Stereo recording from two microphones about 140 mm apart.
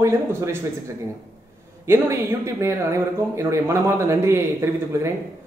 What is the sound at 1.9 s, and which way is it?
Speech, 20° right (ahead or behind).